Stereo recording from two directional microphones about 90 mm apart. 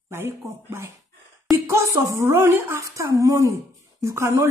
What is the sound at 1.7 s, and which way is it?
A woman's voice, 30° right (ahead or behind).